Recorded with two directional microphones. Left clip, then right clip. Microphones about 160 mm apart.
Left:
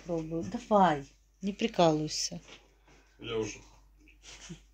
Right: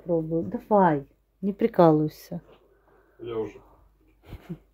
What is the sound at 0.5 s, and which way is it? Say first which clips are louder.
Speech: right 4 dB; 65° right (ahead or behind).